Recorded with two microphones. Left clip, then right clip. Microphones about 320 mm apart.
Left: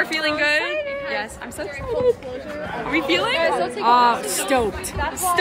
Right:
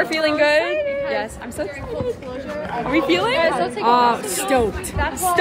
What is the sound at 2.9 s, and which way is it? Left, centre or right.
Speech, centre.